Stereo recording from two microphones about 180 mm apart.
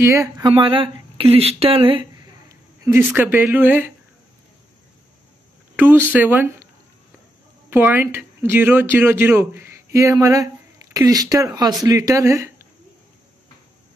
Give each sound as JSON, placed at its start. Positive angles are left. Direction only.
{"t": 0.0, "sound": "speech", "side_deg": -15}
{"t": 0.5, "sound": "speech", "side_deg": -30}
{"t": 2.8, "sound": "speech", "side_deg": -10}
{"t": 5.8, "sound": "speech", "side_deg": -10}
{"t": 7.7, "sound": "speech", "side_deg": -10}